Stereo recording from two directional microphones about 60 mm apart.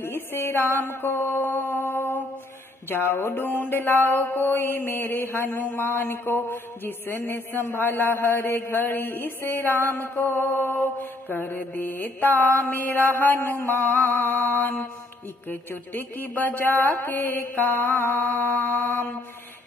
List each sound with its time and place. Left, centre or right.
0.0 s a sound: left
1.7 s music: left
3.4 s mantra: left